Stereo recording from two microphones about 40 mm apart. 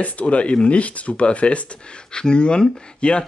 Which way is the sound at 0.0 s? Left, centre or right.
Left.